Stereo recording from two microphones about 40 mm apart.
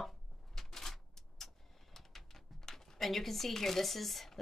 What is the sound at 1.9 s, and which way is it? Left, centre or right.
Speech, centre.